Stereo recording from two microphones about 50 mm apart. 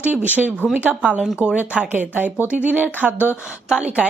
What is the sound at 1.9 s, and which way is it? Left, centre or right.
Speech, right.